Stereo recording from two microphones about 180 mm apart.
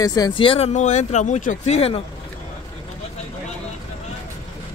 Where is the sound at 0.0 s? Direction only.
20° left (ahead or behind).